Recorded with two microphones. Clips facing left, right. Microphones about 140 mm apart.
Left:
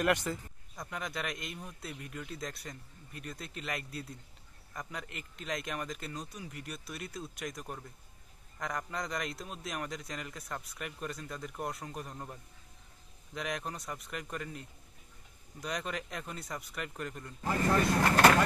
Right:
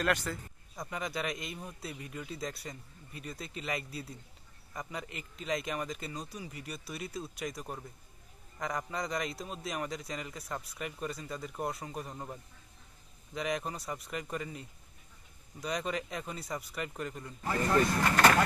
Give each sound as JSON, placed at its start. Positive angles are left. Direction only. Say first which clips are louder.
{"t": 0.0, "sound": "speech", "louder": "left 2 dB", "side_deg": 20}
{"t": 0.7, "sound": "speech", "louder": "right 2 dB", "side_deg": 0}